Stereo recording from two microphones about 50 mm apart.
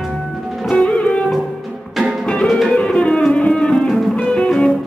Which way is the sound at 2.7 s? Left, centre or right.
Centre.